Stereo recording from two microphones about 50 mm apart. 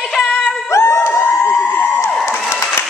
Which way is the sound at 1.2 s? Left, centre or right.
Left.